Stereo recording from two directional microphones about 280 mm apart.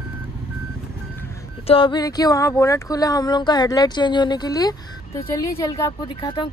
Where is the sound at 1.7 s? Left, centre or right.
Centre.